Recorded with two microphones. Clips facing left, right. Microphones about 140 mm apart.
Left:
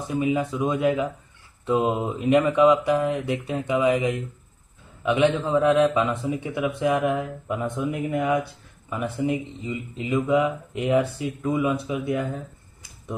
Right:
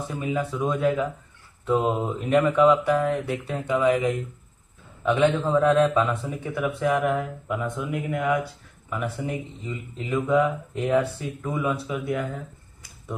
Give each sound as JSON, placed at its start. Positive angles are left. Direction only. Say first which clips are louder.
{"t": 0.1, "sound": "a man's voice", "louder": "left 5 dB", "side_deg": 20}
{"t": 5.8, "sound": "speech", "louder": "even", "side_deg": 5}
{"t": 6.3, "sound": "speech", "louder": "left 1 dB", "side_deg": 20}